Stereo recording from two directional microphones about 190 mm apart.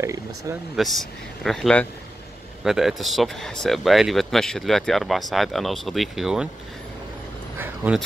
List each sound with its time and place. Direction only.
0.0 s speech: 15° right (ahead or behind)
0.7 s speech: centre (ahead or behind)
7.5 s a sound: 10° right (ahead or behind)